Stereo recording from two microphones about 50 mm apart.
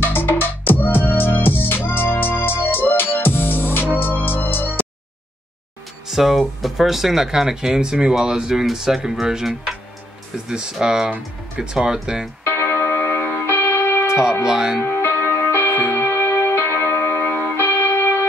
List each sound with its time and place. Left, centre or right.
0.0 s music: left
6.0 s speech: centre
11.1 s speech: right
11.7 s speech: centre
12.4 s music: left
14.4 s speech: centre
14.8 s music: left
17.2 s music: left